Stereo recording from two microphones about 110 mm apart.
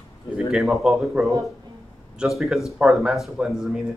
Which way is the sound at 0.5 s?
5° right (ahead or behind).